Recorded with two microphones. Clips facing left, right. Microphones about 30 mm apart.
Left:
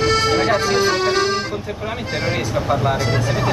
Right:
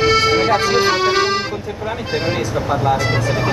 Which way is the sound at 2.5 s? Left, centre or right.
Centre.